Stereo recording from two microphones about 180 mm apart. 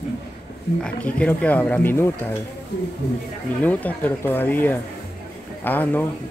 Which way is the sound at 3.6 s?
10° left (ahead or behind).